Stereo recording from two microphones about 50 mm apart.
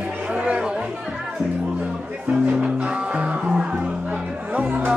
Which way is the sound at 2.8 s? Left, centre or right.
Right.